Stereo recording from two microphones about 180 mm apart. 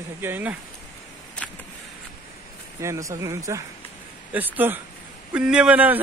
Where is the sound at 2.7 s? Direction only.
15° right (ahead or behind).